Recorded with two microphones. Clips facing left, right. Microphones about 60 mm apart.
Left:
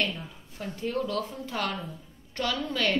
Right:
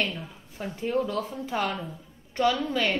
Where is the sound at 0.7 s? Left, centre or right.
Right.